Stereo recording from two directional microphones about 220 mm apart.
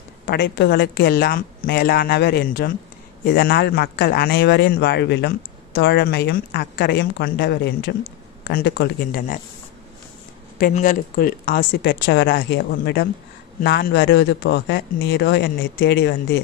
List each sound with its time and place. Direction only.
0.3 s speech: 50° left (ahead or behind)
10.6 s speech: 35° left (ahead or behind); by 16.3 s 50° left (ahead or behind)